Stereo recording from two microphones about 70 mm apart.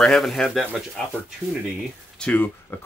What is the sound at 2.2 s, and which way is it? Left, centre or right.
Speech, left.